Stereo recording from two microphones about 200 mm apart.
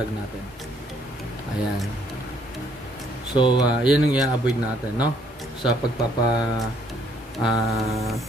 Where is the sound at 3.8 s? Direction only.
5° right (ahead or behind).